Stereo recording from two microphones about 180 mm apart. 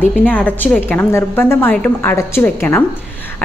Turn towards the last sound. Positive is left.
turn(degrees=10)  # may be behind; listen again after turning